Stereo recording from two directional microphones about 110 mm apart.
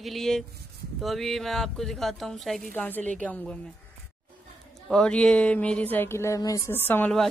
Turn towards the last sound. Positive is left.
turn(degrees=15)  # may be behind; listen again after turning